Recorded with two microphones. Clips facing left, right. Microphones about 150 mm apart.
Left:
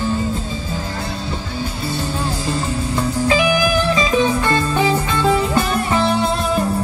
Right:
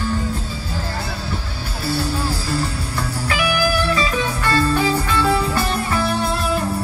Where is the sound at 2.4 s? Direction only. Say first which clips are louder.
Left 3 dB; 20° left (ahead or behind).